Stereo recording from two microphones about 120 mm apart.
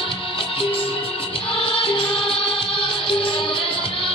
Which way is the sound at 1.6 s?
45° left (ahead or behind).